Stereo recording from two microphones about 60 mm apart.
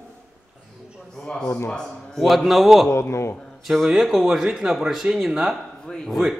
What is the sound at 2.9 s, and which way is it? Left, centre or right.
Speech, left.